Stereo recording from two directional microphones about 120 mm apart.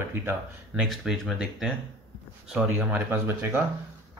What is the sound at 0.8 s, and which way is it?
Speech, 5° right (ahead or behind).